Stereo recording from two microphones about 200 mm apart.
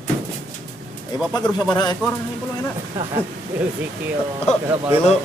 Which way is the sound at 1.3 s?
20° left (ahead or behind).